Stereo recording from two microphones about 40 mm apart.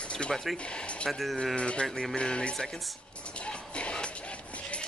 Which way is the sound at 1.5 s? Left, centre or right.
Left.